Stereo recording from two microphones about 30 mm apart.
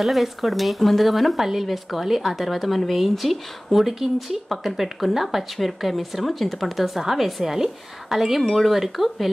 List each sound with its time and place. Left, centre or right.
0.0 s speech: centre
6.8 s speech: centre